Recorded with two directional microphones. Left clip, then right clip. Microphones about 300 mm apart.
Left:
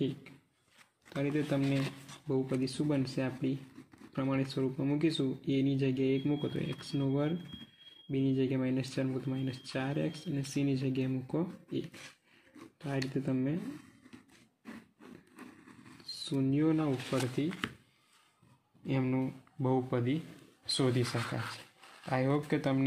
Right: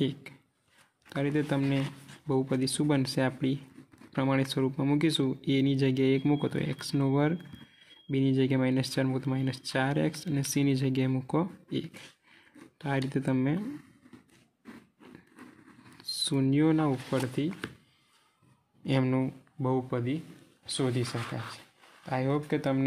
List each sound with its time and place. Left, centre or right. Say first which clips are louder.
1.0 s speech: right 4 dB; right
12.8 s speech: right 5 dB; right
16.0 s speech: right 6 dB; right
18.9 s speech: right 5 dB; right
19.6 s speech: right 2 dB; centre